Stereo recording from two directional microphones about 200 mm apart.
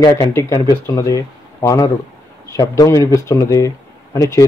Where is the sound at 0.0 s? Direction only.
15° left (ahead or behind).